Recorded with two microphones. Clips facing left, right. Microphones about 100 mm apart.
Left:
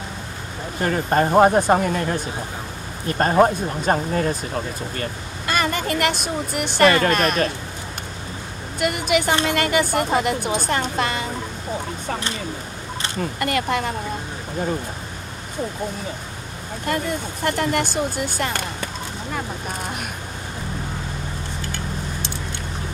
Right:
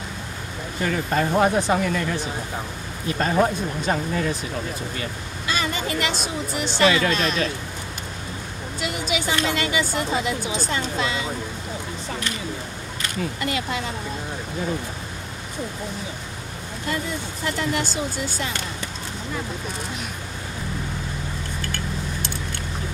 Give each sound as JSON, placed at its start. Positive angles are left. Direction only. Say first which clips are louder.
{"t": 0.7, "sound": "speech", "louder": "left 4 dB", "side_deg": 45}
{"t": 8.7, "sound": "speech", "louder": "left 6 dB", "side_deg": 55}
{"t": 13.2, "sound": "speech", "louder": "left 3 dB", "side_deg": 55}
{"t": 16.8, "sound": "speech", "louder": "left 4 dB", "side_deg": 55}